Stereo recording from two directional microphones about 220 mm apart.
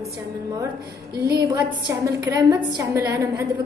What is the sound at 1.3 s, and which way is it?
A woman's voice, 20° right (ahead or behind).